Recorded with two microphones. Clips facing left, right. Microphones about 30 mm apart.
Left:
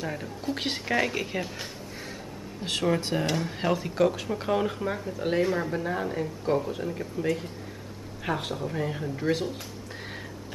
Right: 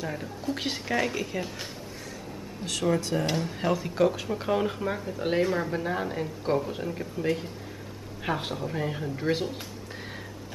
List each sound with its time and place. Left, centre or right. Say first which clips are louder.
0.0 s speech: even; centre
3.1 s speech: even; left
3.6 s speech: even; centre